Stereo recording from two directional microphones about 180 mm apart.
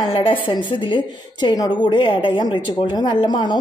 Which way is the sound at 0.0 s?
30° left (ahead or behind).